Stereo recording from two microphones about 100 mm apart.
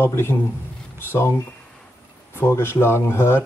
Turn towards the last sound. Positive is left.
turn(degrees=25)  # may be behind; listen again after turning